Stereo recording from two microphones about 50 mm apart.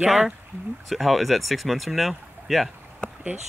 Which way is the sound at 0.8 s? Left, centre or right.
Centre.